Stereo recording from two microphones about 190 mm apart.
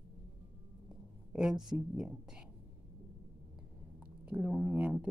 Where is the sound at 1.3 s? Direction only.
5° right (ahead or behind).